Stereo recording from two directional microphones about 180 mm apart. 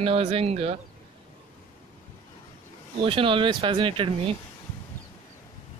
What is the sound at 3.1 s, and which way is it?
Speech, 30° right (ahead or behind).